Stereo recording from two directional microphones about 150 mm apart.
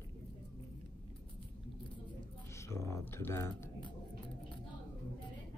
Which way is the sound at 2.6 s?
20° left (ahead or behind).